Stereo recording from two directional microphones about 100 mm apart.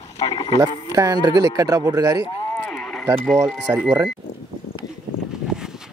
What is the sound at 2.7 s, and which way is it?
Livestock, 5° left (ahead or behind).